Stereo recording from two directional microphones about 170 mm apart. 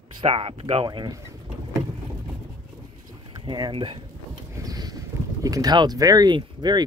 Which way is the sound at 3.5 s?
25° right (ahead or behind).